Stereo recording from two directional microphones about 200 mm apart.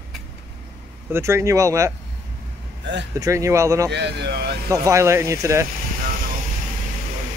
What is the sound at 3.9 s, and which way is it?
Speech, 55° right (ahead or behind).